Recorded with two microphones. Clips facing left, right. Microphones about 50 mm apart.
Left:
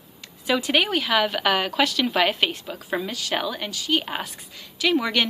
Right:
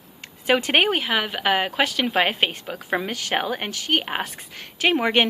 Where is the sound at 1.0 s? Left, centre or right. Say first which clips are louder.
Left 2 dB; centre.